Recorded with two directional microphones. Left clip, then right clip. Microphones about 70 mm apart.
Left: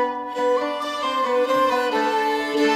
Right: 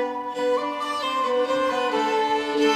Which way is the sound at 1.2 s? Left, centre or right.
Centre.